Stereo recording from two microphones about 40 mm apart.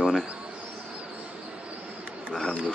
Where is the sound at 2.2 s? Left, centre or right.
Centre.